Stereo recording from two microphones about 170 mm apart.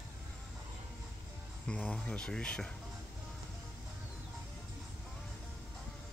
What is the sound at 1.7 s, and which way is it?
Speech, 5° left (ahead or behind).